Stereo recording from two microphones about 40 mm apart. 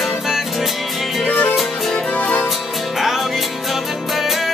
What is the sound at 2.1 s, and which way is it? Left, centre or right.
Music, left.